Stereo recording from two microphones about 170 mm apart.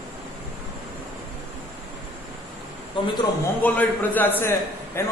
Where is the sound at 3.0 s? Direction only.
30° left (ahead or behind).